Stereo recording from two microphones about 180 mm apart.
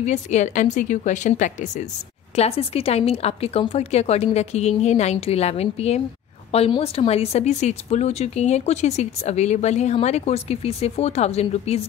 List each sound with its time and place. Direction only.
0.0 s a woman's voice: 40° left (ahead or behind)